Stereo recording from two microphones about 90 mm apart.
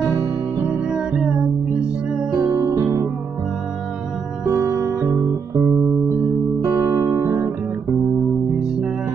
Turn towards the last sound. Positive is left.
turn(degrees=-30)  # may be behind; listen again after turning